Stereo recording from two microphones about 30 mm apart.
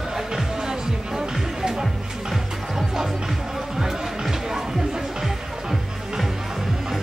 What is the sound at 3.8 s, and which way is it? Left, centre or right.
Music, centre.